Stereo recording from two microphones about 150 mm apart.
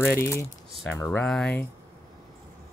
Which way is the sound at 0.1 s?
15° left (ahead or behind).